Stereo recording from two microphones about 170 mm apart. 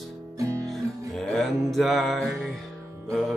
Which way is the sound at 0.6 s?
Centre (ahead or behind).